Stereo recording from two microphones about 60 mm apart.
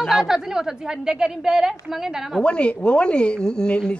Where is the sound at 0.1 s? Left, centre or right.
Centre.